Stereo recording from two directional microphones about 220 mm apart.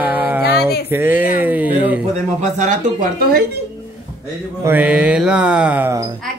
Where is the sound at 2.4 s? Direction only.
35° right (ahead or behind).